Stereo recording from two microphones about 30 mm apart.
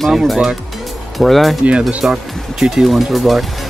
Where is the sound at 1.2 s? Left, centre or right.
Centre.